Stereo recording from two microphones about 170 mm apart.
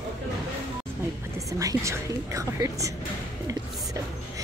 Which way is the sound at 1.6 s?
20° right (ahead or behind).